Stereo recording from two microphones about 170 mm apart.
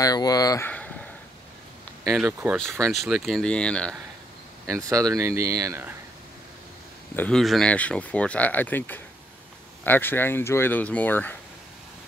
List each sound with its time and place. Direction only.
0.0 s speech: 20° left (ahead or behind)
0.7 s a sound: 10° left (ahead or behind)
2.0 s speech: 5° right (ahead or behind)
4.6 s speech: 20° right (ahead or behind)
7.2 s speech: 5° left (ahead or behind)